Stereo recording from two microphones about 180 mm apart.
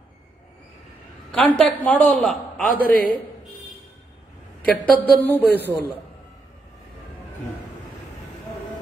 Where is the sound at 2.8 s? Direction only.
55° right (ahead or behind).